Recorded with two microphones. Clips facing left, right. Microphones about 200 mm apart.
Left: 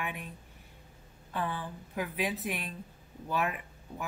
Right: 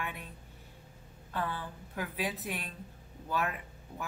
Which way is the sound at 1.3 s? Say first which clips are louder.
Left 1 dB; 15° left (ahead or behind).